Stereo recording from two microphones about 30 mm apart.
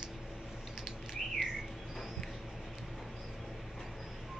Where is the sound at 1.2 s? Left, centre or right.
Centre.